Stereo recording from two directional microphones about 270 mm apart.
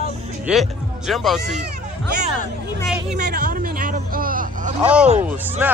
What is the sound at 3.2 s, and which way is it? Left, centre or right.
Speech, right.